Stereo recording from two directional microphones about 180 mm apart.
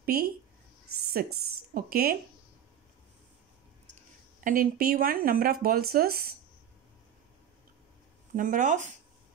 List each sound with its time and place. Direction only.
0.0 s speech: 55° right (ahead or behind)
1.7 s speech: 55° right (ahead or behind)
4.4 s speech: 50° right (ahead or behind)
8.4 s speech: 45° right (ahead or behind)